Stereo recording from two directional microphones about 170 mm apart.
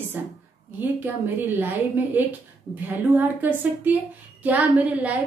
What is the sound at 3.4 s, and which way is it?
A woman's voice, 10° right (ahead or behind).